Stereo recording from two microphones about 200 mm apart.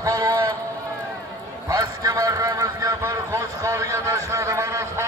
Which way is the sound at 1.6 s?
15° right (ahead or behind).